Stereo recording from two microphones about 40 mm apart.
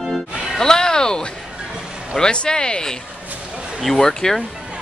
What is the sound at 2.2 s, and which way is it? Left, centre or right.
Speech, left.